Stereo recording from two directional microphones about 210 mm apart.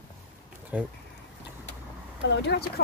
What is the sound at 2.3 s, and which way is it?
Speech, 55° left (ahead or behind).